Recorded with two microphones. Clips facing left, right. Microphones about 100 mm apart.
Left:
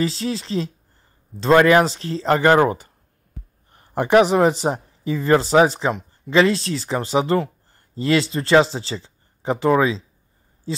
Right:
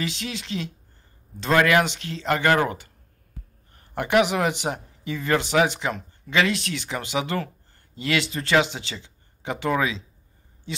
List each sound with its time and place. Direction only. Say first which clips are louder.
0.0 s speech: left 8 dB; 35° left (ahead or behind)